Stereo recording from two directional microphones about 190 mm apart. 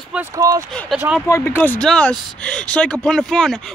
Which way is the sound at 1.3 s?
10° left (ahead or behind).